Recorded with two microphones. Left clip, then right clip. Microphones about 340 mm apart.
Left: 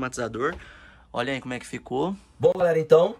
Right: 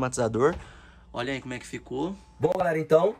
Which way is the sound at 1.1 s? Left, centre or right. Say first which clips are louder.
Left 4 dB; centre.